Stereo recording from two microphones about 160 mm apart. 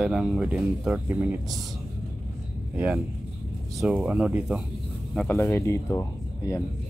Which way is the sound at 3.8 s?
5° right (ahead or behind).